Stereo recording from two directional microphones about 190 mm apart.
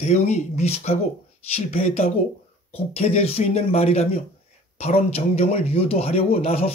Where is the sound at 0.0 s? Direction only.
35° left (ahead or behind).